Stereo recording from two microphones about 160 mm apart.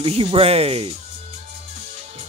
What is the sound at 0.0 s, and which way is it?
Speech, 35° right (ahead or behind).